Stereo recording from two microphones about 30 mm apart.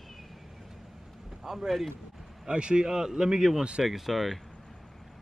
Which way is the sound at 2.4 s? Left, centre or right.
Right.